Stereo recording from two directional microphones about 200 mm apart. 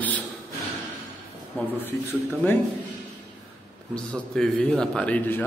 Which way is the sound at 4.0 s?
5° left (ahead or behind).